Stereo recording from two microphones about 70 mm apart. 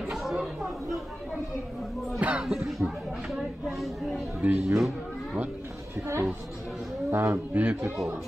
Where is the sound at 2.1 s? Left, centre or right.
Centre.